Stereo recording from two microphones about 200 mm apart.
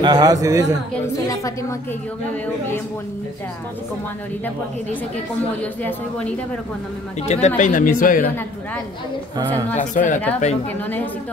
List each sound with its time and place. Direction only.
0.0 s a man's voice: 20° right (ahead or behind)
1.3 s speech: 15° left (ahead or behind)
5.6 s speech: 10° left (ahead or behind)
7.2 s speech: 35° left (ahead or behind)
9.8 s speech: 40° left (ahead or behind)